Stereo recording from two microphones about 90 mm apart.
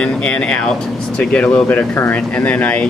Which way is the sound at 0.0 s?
10° left (ahead or behind).